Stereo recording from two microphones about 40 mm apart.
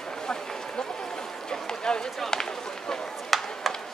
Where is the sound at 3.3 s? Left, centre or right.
Centre.